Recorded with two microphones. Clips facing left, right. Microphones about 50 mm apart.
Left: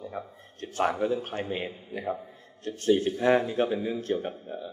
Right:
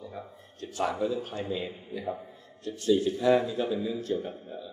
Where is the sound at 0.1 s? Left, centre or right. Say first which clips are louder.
Left 4 dB; left.